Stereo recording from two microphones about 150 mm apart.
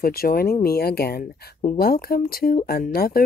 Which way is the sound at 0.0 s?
85° left.